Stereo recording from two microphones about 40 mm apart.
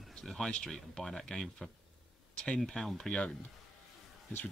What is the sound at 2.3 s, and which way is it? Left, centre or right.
Speech, left.